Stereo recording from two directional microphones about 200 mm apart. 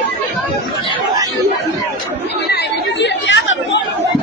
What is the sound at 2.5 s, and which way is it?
Chatter, 60° left (ahead or behind).